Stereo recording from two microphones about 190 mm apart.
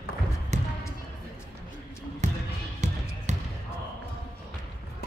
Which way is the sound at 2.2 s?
40° right (ahead or behind).